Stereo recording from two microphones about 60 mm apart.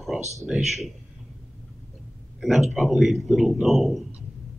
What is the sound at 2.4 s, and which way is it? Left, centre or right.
Speech, centre.